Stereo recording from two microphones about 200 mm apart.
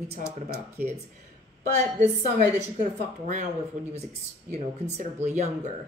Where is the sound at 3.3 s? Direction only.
35° right (ahead or behind).